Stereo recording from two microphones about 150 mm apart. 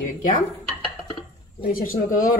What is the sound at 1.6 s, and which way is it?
Speech, 70° left (ahead or behind).